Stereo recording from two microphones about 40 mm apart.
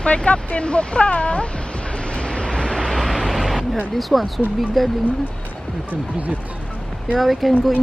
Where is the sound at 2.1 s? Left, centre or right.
Left.